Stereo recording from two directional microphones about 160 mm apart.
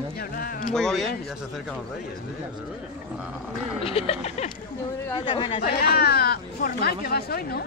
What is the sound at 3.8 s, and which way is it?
Speech, 35° left (ahead or behind).